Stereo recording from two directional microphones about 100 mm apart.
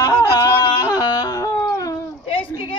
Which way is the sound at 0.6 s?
40° left (ahead or behind).